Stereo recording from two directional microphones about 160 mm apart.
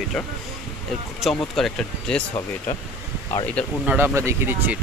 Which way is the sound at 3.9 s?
15° right (ahead or behind).